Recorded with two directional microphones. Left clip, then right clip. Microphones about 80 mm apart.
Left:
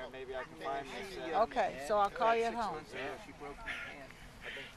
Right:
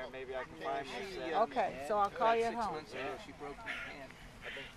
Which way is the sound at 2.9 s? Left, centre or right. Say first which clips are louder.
Right 1 dB; centre.